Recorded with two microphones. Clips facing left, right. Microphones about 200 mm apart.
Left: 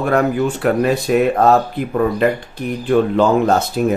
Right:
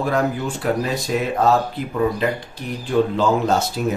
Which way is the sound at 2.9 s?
60° left (ahead or behind).